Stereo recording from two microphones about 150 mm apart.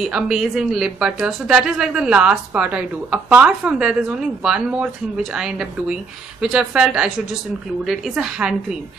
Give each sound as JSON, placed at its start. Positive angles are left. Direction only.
{"t": 0.1, "sound": "a woman's voice", "side_deg": -5}